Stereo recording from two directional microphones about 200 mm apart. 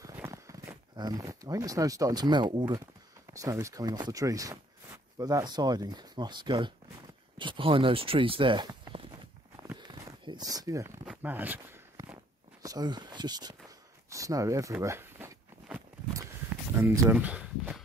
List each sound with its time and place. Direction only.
0.0 s speech: 15° right (ahead or behind)
2.6 s speech: 10° right (ahead or behind)
9.6 s a sound: 20° right (ahead or behind)
11.1 s walk: 10° right (ahead or behind)
12.6 s speech: 20° right (ahead or behind)
13.7 s a sound: 15° right (ahead or behind)
16.9 s speech: 10° right (ahead or behind)